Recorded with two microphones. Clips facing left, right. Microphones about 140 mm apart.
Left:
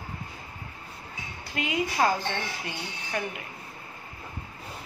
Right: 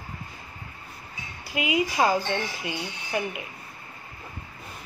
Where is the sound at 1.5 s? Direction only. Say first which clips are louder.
Right 3 dB; 10° right (ahead or behind).